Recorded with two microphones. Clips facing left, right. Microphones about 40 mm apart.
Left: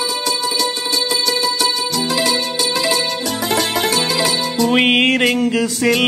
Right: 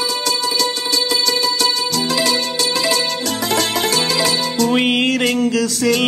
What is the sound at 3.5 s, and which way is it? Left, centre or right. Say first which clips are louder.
Music: left 1 dB; left.